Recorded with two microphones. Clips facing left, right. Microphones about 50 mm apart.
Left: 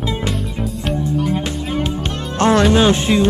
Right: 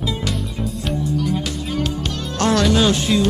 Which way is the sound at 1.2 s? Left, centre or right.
Left.